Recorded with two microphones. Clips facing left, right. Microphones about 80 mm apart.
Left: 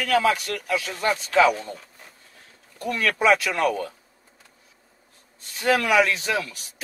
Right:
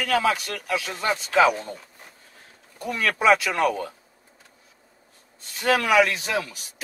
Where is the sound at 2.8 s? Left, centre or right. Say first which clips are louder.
Left 1 dB; centre.